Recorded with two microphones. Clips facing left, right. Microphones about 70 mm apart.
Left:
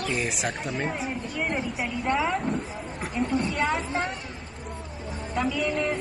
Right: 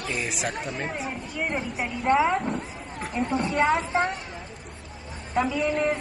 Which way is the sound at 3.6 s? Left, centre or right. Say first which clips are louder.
Right 4 dB; centre.